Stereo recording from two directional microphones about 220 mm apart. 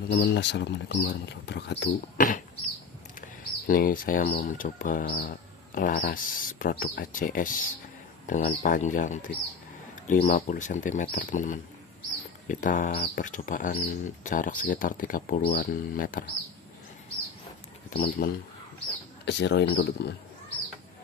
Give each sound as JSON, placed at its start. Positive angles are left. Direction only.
{"t": 0.1, "sound": "speech", "side_deg": 50}
{"t": 17.8, "sound": "speech", "side_deg": 40}
{"t": 19.2, "sound": "speech", "side_deg": 50}